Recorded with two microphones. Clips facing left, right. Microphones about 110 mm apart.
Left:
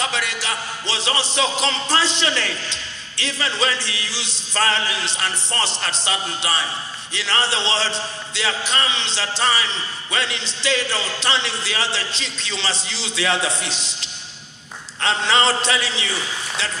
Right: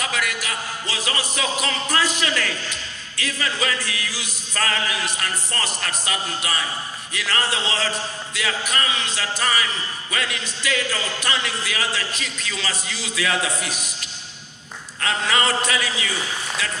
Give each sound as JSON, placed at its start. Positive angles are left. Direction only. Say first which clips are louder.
{"t": 0.0, "sound": "a man's voice", "louder": "left 1 dB", "side_deg": 30}
{"t": 15.0, "sound": "a man's voice", "louder": "left 3 dB", "side_deg": 30}